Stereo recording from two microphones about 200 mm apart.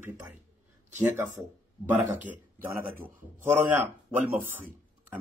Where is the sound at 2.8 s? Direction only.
10° right (ahead or behind).